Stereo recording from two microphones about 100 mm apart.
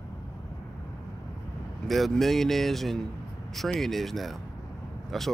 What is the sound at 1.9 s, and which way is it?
Speech, centre (ahead or behind).